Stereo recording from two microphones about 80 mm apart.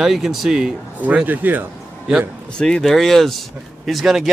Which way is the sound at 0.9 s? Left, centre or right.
Centre.